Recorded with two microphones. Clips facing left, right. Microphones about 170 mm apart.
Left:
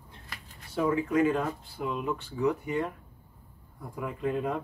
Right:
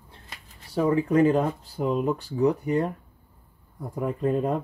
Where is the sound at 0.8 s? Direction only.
35° right (ahead or behind).